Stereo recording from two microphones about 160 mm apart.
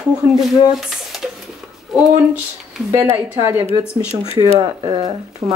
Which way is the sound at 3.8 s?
15° left (ahead or behind).